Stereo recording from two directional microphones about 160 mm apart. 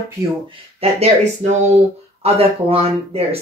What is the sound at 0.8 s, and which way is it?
Speech, 40° right (ahead or behind).